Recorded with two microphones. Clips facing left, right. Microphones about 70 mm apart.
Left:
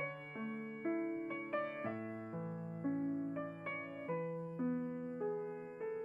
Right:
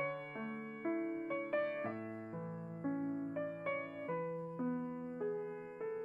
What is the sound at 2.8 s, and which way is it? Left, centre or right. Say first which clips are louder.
Music: left 1 dB; centre.